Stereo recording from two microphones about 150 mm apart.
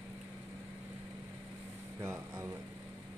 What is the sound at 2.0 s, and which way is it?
Speech, 20° right (ahead or behind).